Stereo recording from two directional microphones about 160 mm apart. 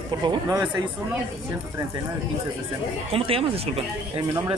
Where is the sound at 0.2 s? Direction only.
25° right (ahead or behind).